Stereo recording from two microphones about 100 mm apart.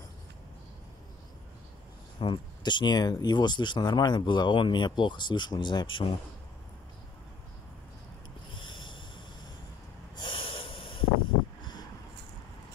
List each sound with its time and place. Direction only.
2.1 s speech: 55° left (ahead or behind)
8.5 s a sound: 55° left (ahead or behind)
10.1 s snort: 55° left (ahead or behind)